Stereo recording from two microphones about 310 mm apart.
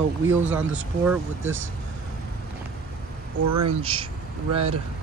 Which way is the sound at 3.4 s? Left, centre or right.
Right.